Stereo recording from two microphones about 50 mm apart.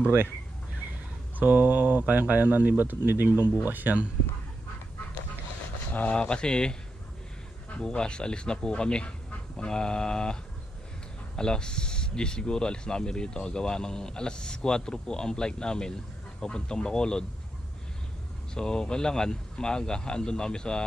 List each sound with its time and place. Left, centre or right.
1.4 s speech: right
6.0 s speech: left
7.8 s speech: centre
18.5 s speech: centre